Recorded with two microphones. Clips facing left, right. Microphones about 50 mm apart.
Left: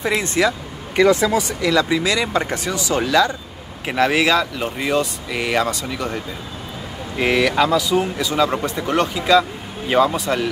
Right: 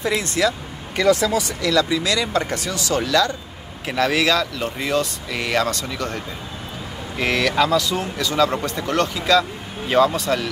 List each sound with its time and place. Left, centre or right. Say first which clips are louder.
0.0 s speech: left 2 dB; left; by 10.5 s centre